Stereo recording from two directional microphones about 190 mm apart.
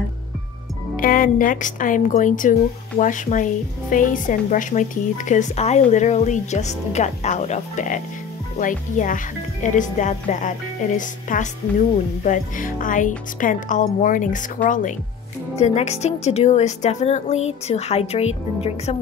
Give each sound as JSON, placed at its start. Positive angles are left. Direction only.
{"t": 0.9, "sound": "speech", "side_deg": 45}